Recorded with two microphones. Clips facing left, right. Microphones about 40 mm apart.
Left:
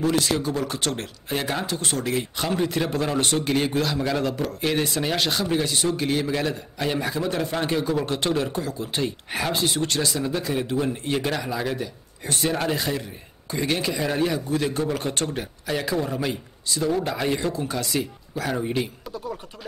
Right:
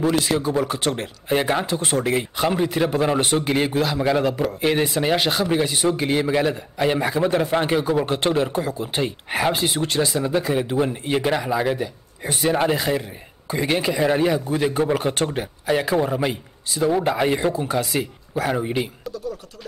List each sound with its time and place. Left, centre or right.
0.0 s speech: centre